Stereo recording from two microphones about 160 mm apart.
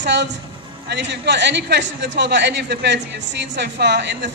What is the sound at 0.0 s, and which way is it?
A woman's voice, 90° right.